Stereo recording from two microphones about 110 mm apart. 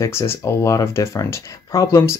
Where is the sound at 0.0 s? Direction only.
25° left (ahead or behind).